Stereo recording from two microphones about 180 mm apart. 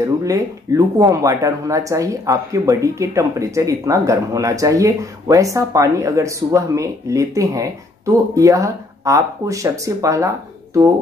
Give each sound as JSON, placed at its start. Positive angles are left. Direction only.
{"t": 0.0, "sound": "speech", "side_deg": -20}